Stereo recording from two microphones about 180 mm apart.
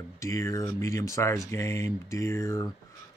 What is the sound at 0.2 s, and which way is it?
Speech, 15° left (ahead or behind).